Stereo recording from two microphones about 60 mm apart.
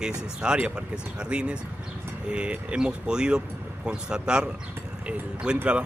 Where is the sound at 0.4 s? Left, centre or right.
Centre.